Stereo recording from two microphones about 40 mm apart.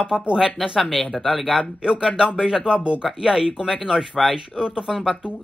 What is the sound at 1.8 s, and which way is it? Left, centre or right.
Speech, centre.